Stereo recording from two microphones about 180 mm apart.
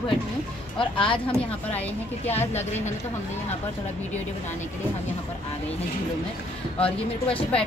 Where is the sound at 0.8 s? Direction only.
30° left (ahead or behind).